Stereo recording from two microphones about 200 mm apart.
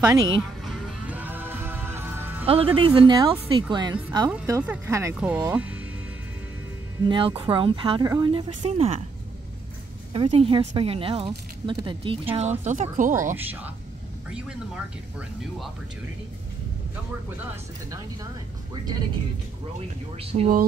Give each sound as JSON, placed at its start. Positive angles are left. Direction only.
{"t": 0.0, "sound": "speech", "side_deg": -20}
{"t": 0.7, "sound": "music", "side_deg": 0}
{"t": 2.4, "sound": "speech", "side_deg": -30}
{"t": 4.3, "sound": "speech", "side_deg": -10}
{"t": 7.1, "sound": "speech", "side_deg": -25}
{"t": 10.1, "sound": "speech", "side_deg": -30}
{"t": 14.3, "sound": "speech", "side_deg": -5}
{"t": 20.3, "sound": "music", "side_deg": -35}